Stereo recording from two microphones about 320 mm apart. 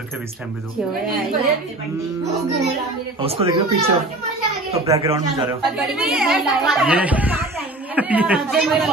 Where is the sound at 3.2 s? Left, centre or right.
Centre.